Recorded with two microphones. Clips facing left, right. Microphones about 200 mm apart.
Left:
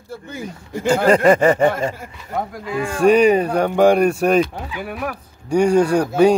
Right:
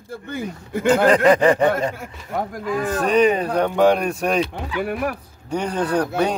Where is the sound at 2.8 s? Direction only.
10° left (ahead or behind).